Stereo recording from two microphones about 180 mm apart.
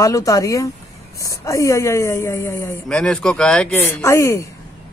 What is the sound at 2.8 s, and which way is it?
Speech, 5° left (ahead or behind).